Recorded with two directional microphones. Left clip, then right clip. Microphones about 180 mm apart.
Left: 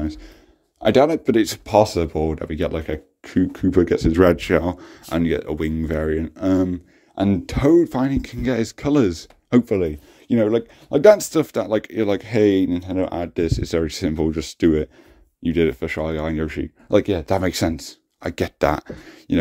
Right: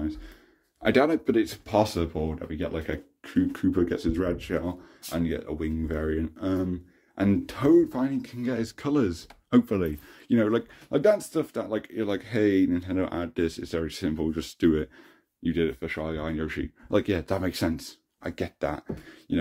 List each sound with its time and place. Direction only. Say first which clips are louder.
0.0 s a sound: left 5 dB; 45° left (ahead or behind)
0.8 s speech: left 7 dB; 35° left (ahead or behind)
1.2 s speech: left 7 dB; 60° left (ahead or behind)
1.7 s speech: left 10 dB; 30° left (ahead or behind)
2.3 s speech: left 9 dB; 55° left (ahead or behind)
2.9 s speech: left 6 dB; 30° left (ahead or behind)
3.7 s speech: left 9 dB; 40° left (ahead or behind)
4.2 s speech: left 13 dB; 60° left (ahead or behind); by 11.0 s 30° left (ahead or behind)
11.0 s speech: left 10 dB; 60° left (ahead or behind); by 13.6 s 30° left (ahead or behind)
13.6 s speech: left 8 dB; 45° left (ahead or behind)
15.4 s speech: left 8 dB; 50° left (ahead or behind)
16.4 s speech: left 6 dB; 25° left (ahead or behind)
17.3 s speech: left 8 dB; 50° left (ahead or behind)
18.3 s speech: left 11 dB; 65° left (ahead or behind)